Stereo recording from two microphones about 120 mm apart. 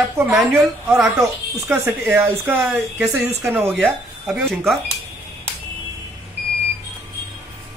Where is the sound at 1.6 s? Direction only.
20° right (ahead or behind).